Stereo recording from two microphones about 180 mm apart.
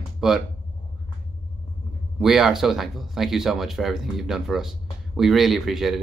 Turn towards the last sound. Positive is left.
turn(degrees=0)  # may be behind; listen again after turning